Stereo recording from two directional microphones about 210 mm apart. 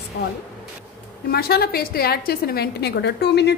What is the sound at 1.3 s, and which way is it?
A woman's voice, 45° left (ahead or behind).